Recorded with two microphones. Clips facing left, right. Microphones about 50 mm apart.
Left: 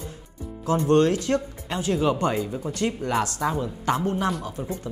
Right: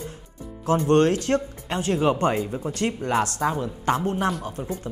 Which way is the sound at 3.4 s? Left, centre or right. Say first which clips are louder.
Right 1 dB; centre.